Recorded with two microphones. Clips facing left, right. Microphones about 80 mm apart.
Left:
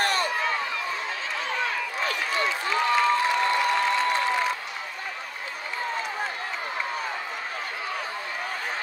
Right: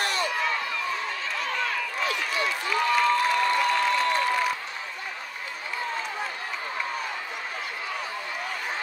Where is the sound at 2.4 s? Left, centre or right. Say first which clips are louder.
Even; left.